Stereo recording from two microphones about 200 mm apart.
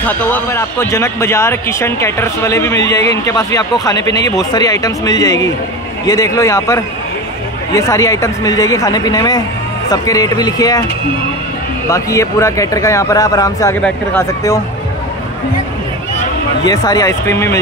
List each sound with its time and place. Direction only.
0.0 s a man's voice: 10° left (ahead or behind)
11.9 s a man's voice: 15° left (ahead or behind)
16.6 s a man's voice: 15° left (ahead or behind)